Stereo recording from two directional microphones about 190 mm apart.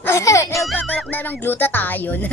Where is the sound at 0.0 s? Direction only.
15° left (ahead or behind).